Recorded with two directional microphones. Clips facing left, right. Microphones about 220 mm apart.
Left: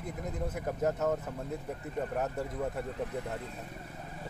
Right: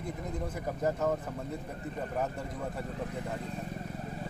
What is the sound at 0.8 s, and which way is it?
Speech, centre (ahead or behind).